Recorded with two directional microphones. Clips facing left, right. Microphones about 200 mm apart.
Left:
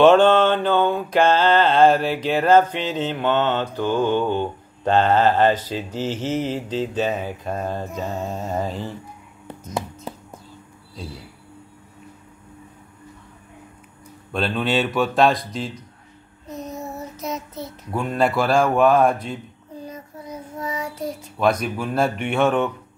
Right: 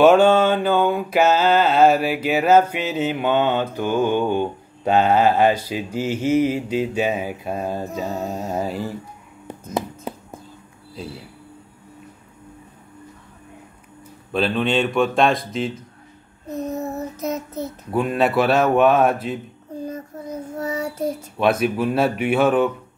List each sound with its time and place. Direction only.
0.0 s mantra: 10° right (ahead or behind)
14.3 s speech: centre (ahead or behind)
16.4 s child singing: 60° right (ahead or behind)
17.9 s speech: 5° right (ahead or behind)
19.9 s child singing: 50° right (ahead or behind)
21.4 s speech: 5° right (ahead or behind)